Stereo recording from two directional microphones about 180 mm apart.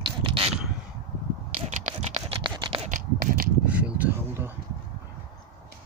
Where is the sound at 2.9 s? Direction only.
50° right (ahead or behind).